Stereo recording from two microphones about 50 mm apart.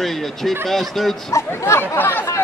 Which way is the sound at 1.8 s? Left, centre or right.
Left.